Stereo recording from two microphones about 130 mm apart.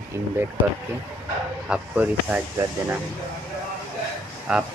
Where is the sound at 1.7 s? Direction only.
10° right (ahead or behind).